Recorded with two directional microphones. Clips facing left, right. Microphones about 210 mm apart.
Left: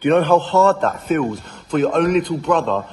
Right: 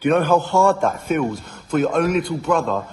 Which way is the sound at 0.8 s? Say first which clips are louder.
Left 1 dB; 10° right (ahead or behind).